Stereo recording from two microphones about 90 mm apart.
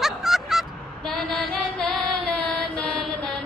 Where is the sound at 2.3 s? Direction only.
5° left (ahead or behind).